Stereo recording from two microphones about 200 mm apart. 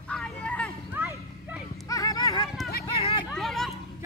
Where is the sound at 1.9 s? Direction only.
15° left (ahead or behind).